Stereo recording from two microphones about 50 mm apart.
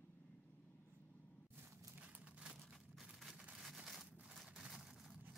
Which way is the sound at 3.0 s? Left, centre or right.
Centre.